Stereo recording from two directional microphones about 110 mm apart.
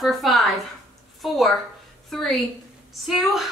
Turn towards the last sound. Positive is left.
turn(degrees=0)  # may be behind; listen again after turning